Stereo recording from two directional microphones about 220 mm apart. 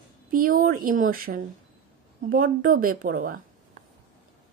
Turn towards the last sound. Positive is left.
turn(degrees=-40)  # may be behind; listen again after turning